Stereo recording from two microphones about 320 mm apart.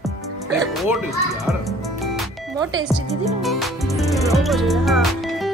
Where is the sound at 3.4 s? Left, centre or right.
Centre.